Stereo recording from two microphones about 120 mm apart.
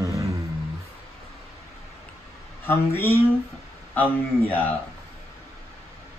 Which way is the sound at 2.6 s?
20° left (ahead or behind).